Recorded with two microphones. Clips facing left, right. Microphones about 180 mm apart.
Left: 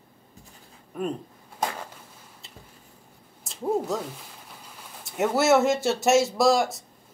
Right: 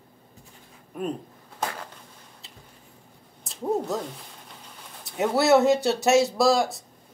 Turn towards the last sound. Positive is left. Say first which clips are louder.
# even
turn(degrees=0)  # may be behind; listen again after turning